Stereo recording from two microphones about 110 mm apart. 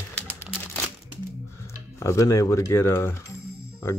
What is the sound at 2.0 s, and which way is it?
Speech, 30° left (ahead or behind).